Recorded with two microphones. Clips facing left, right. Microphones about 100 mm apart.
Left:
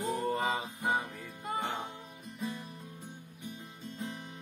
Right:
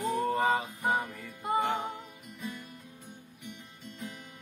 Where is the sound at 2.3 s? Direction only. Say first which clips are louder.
Left 2 dB; 30° left (ahead or behind).